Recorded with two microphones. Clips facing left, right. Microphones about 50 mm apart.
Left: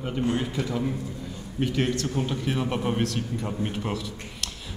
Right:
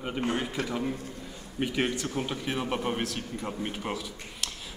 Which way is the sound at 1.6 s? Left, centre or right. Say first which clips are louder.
Left 3 dB; centre.